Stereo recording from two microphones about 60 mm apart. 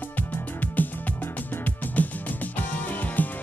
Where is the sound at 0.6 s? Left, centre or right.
Left.